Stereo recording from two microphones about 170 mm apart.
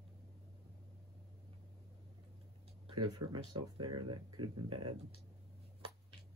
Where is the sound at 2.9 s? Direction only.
30° right (ahead or behind).